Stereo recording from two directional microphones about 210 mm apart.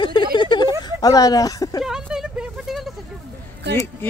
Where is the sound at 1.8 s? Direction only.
5° right (ahead or behind).